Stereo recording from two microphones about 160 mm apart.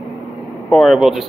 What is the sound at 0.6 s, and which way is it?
Speech, centre (ahead or behind).